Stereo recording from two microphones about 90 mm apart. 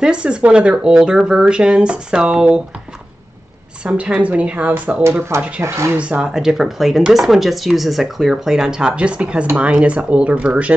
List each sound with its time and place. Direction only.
0.0 s speech: 10° right (ahead or behind)
3.8 s speech: 10° right (ahead or behind)
5.6 s speech: 30° right (ahead or behind)
5.9 s speech: 15° right (ahead or behind)